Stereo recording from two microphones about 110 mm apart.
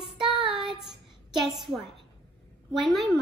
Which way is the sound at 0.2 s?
50° right (ahead or behind).